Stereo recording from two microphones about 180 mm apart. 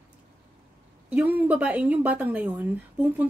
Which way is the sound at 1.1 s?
10° right (ahead or behind).